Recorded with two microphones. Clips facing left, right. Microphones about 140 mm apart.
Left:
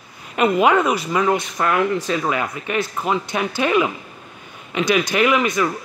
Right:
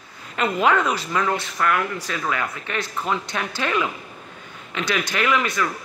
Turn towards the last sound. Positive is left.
turn(degrees=15)  # may be behind; listen again after turning